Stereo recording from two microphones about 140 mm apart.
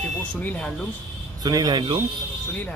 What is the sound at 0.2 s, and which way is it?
Speech, 10° left (ahead or behind).